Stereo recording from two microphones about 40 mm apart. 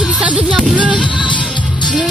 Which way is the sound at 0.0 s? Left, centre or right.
Right.